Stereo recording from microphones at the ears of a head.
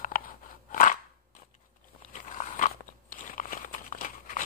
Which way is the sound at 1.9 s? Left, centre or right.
Left.